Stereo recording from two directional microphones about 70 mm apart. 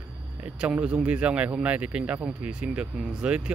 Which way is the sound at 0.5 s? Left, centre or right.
Centre.